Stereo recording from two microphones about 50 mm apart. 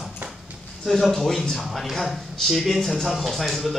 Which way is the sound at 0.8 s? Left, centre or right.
Centre.